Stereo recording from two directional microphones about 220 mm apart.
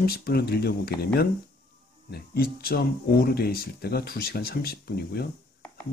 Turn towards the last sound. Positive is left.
turn(degrees=45)  # may be behind; listen again after turning